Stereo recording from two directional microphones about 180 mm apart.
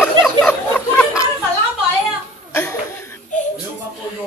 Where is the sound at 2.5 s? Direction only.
15° left (ahead or behind).